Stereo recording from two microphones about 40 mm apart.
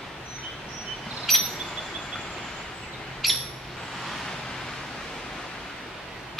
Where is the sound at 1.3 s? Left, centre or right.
Centre.